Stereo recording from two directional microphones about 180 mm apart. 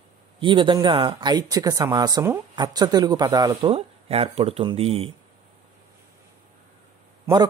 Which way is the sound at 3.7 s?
35° right (ahead or behind).